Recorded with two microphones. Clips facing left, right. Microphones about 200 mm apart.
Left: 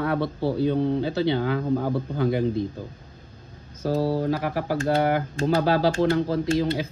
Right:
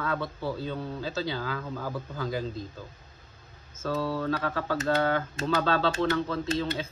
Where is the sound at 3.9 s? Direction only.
30° left (ahead or behind).